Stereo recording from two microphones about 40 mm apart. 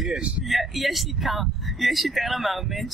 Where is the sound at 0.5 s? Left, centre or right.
Centre.